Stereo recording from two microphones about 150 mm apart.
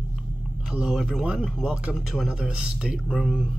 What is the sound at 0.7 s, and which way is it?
Speech, 5° right (ahead or behind).